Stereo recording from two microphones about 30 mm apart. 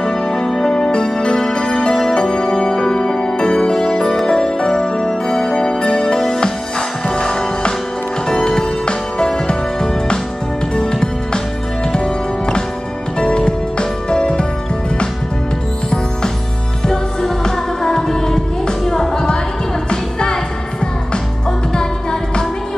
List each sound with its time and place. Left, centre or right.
0.0 s music: centre
0.7 s music: left
6.1 s music: centre
7.1 s music: left
16.8 s music: left
19.9 s music: left